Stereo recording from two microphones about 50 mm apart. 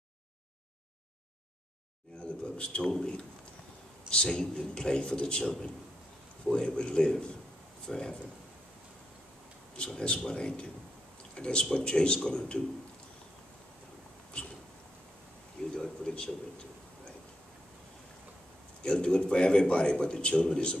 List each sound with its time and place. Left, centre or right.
2.1 s a man's voice: left
9.9 s a man's voice: centre
15.7 s a sound: centre
18.8 s a man's voice: centre